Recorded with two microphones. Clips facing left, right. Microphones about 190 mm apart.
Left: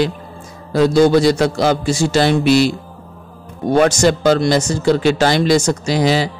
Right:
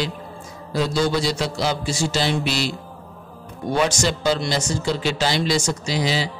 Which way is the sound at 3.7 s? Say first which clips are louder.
Left 8 dB; 50° left (ahead or behind).